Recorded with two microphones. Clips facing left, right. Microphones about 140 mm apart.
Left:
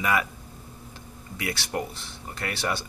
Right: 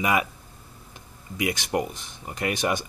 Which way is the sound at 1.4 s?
20° right (ahead or behind).